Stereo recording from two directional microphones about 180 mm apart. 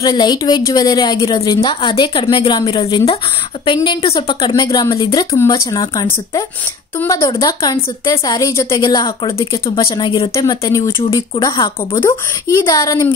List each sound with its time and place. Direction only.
0.0 s a woman's voice: 25° left (ahead or behind)
10.3 s a woman's voice: 15° left (ahead or behind)